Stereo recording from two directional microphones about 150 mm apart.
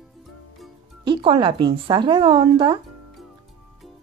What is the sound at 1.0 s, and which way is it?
Speech, 35° right (ahead or behind).